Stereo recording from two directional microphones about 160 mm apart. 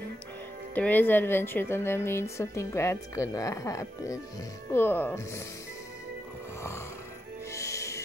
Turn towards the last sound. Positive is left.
turn(degrees=20)  # may be behind; listen again after turning